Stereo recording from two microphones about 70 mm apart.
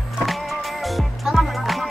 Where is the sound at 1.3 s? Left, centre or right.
Centre.